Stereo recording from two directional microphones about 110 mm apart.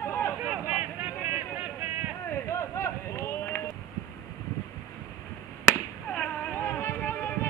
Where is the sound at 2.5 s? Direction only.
25° left (ahead or behind).